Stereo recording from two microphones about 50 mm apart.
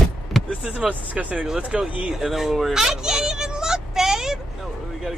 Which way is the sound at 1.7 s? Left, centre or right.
Centre.